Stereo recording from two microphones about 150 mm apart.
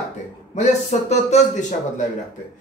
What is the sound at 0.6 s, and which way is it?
Speech, 50° left (ahead or behind).